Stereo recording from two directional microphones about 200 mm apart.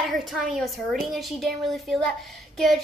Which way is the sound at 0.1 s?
Centre (ahead or behind).